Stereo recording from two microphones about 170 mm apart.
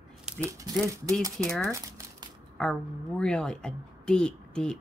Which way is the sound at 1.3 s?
5° left (ahead or behind).